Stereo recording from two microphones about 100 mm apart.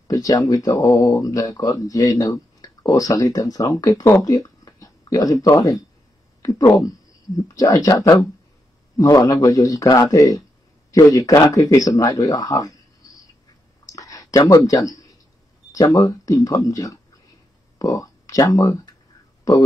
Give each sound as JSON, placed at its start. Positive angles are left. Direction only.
{"t": 0.1, "sound": "speech", "side_deg": 35}
{"t": 13.9, "sound": "a sound", "side_deg": 35}
{"t": 14.5, "sound": "speech", "side_deg": 40}